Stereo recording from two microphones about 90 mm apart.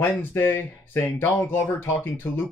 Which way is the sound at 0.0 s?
25° left (ahead or behind).